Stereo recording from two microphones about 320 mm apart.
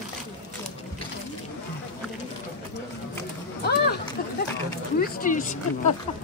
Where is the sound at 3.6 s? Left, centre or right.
Left.